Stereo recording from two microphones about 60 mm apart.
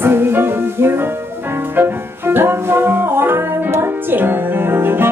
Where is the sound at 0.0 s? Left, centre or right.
Right.